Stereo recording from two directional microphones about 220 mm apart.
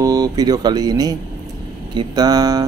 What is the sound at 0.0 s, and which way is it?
Speech, 15° right (ahead or behind).